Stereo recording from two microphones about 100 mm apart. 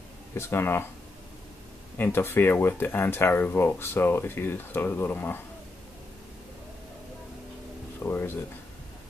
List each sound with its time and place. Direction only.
0.3 s speech: 25° left (ahead or behind)
2.0 s speech: 20° left (ahead or behind)
8.0 s speech: 25° left (ahead or behind)